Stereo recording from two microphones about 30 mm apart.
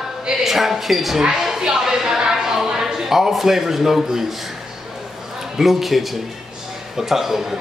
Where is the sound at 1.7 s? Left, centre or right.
Centre.